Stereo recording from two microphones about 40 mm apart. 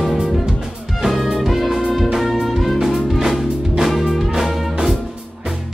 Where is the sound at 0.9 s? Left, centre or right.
Centre.